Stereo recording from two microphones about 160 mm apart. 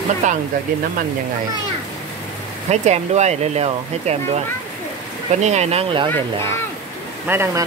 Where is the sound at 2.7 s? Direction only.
45° right (ahead or behind).